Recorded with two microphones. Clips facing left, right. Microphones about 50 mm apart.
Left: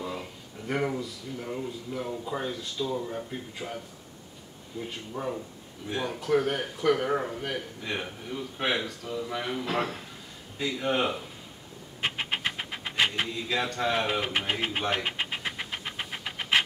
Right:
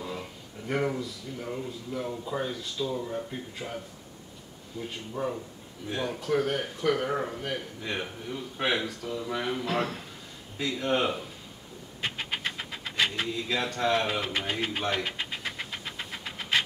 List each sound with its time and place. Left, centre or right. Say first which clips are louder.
0.7 s speech: even; centre
12.0 s a sound: left 2 dB; left
13.3 s speech: even; centre
14.6 s speech: left 1 dB; left
15.0 s pant: left 2 dB; left